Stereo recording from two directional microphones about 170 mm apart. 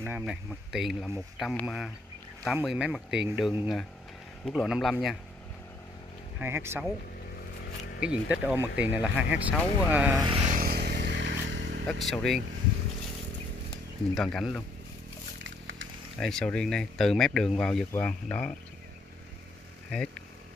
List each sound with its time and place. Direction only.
0.0 s speech: 10° right (ahead or behind)
6.4 s speech: 15° right (ahead or behind)
8.0 s speech: 5° right (ahead or behind)
10.2 s a sound: 35° right (ahead or behind)
10.5 s a sound: 60° right (ahead or behind); by 11.8 s 90° right
11.8 s speech: centre (ahead or behind)
14.1 s speech: centre (ahead or behind)
16.2 s speech: 5° left (ahead or behind)